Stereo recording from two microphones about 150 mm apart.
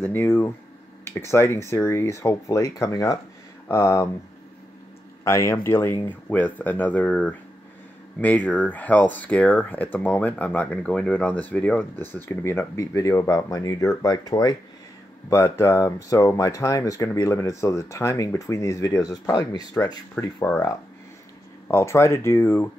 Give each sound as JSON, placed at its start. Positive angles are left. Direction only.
{"t": 0.0, "sound": "speech", "side_deg": 15}
{"t": 5.2, "sound": "speech", "side_deg": 20}
{"t": 21.6, "sound": "speech", "side_deg": 20}